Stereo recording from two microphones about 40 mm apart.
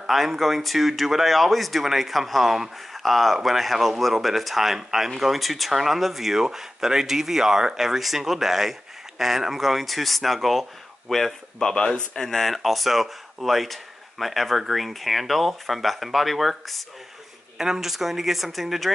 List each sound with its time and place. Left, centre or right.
0.0 s speech: centre
11.7 s speech: centre
12.2 s speech: centre